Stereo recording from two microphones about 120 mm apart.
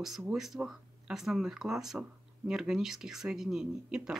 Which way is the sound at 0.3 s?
5° right (ahead or behind).